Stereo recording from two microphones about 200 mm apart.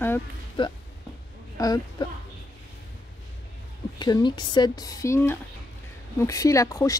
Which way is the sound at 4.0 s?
20° left (ahead or behind).